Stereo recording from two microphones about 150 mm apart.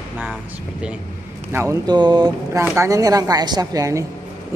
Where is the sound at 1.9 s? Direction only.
30° right (ahead or behind).